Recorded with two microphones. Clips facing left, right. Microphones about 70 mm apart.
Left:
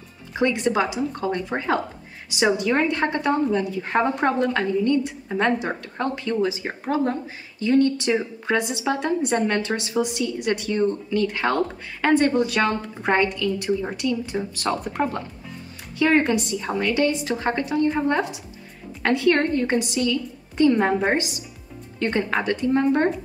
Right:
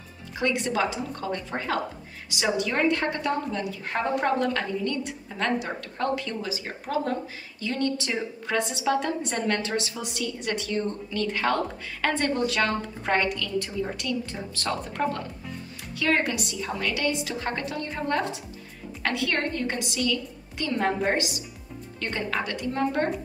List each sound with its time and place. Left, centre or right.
0.4 s a woman's voice: left
7.7 s a woman's voice: centre
16.0 s a woman's voice: left